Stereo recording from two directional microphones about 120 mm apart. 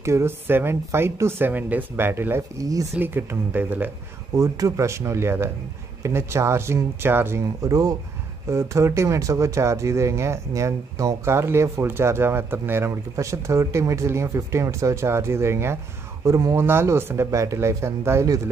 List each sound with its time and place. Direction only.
0.0 s speech: 20° right (ahead or behind)
3.0 s speech: 15° right (ahead or behind)
4.4 s speech: 25° right (ahead or behind)